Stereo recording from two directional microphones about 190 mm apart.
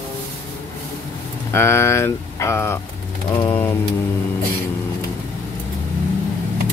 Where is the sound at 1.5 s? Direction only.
15° left (ahead or behind).